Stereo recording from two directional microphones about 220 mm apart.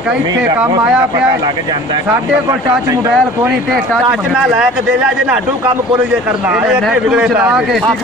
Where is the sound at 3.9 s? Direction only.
5° right (ahead or behind).